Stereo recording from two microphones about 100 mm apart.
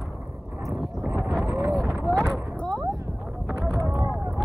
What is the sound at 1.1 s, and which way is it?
Vehicle, 5° right (ahead or behind).